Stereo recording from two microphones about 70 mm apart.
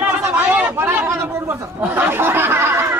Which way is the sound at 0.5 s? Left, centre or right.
Right.